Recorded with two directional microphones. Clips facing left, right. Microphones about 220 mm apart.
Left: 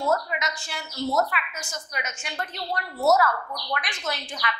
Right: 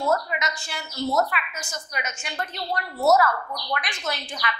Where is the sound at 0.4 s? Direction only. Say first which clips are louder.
Right 1 dB; 10° right (ahead or behind).